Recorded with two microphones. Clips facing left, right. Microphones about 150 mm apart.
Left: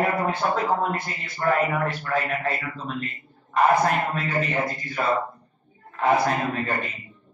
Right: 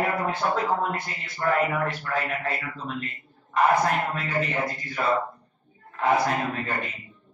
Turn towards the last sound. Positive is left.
turn(degrees=0)  # may be behind; listen again after turning